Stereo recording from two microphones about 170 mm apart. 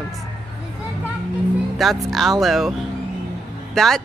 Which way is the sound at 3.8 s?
Centre (ahead or behind).